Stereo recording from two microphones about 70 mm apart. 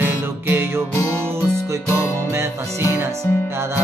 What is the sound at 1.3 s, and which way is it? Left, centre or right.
Music, right.